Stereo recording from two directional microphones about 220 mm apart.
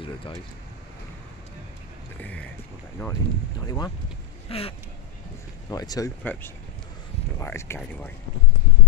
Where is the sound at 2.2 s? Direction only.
5° left (ahead or behind).